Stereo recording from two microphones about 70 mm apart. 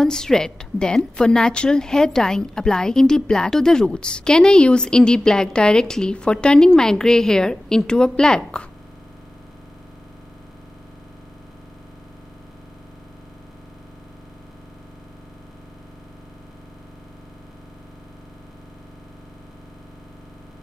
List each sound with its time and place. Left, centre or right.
0.0 s a woman's voice: centre